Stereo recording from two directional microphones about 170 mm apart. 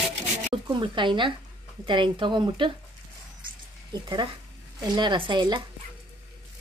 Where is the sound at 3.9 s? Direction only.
25° right (ahead or behind).